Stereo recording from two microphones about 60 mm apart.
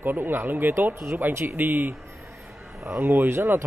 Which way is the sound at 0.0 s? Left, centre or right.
Right.